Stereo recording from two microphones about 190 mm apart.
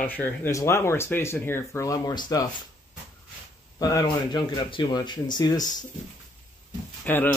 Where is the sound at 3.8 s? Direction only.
20° left (ahead or behind).